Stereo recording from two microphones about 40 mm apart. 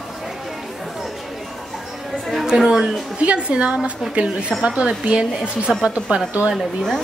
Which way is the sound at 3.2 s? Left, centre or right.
Right.